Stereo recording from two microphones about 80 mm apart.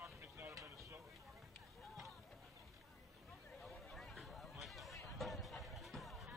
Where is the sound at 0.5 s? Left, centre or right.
Right.